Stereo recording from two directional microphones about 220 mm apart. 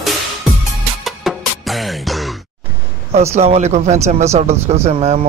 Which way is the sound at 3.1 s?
30° right (ahead or behind).